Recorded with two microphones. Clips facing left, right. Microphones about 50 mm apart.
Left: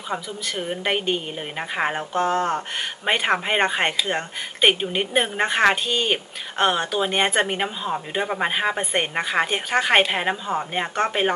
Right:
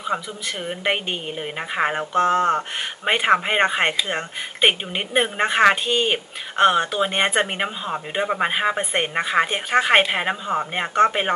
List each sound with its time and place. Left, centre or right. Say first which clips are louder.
0.6 s speech: even; centre
3.1 s speech: right 3 dB; centre